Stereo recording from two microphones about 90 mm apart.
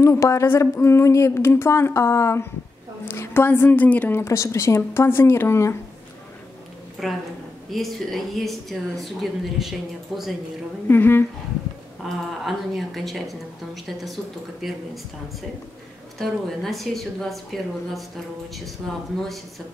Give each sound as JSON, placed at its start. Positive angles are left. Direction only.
{"t": 0.0, "sound": "a woman's voice", "side_deg": 35}
{"t": 4.2, "sound": "a woman's voice", "side_deg": 35}
{"t": 7.0, "sound": "speech", "side_deg": 0}
{"t": 10.9, "sound": "a woman's voice", "side_deg": 25}
{"t": 12.0, "sound": "speech", "side_deg": 0}
{"t": 16.2, "sound": "speech", "side_deg": 5}